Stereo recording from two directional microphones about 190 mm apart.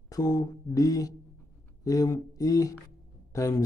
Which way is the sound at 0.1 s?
20° left (ahead or behind).